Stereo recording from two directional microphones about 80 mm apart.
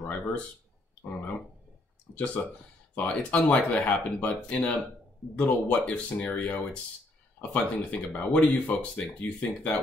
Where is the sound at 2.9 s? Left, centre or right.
Centre.